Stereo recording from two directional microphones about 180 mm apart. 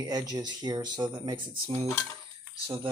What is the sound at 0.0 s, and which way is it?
Speech, 20° right (ahead or behind).